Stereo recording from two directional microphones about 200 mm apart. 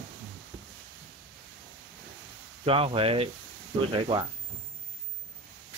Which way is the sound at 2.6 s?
30° right (ahead or behind).